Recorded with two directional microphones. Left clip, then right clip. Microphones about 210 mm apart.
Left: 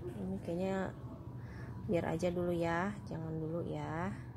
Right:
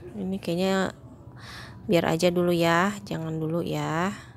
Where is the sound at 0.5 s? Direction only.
40° right (ahead or behind).